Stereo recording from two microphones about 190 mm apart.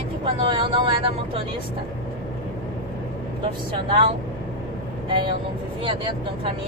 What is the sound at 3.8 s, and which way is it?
Speech, 30° right (ahead or behind).